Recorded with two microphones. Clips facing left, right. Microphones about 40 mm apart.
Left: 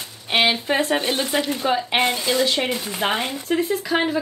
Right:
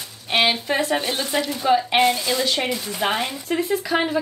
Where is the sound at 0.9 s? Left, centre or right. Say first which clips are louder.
Left 1 dB; left.